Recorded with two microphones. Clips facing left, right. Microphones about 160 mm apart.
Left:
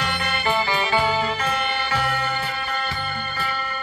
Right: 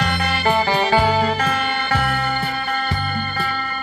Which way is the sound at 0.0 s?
40° right (ahead or behind).